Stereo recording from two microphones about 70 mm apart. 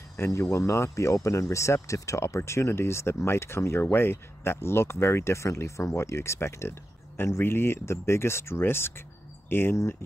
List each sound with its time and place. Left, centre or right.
0.2 s speech: left